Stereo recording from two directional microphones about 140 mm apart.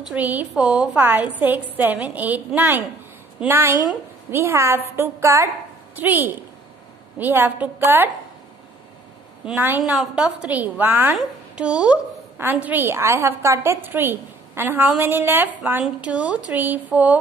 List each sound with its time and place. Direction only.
0.0 s a woman's voice: 10° right (ahead or behind)
9.9 s a woman's voice: 5° right (ahead or behind)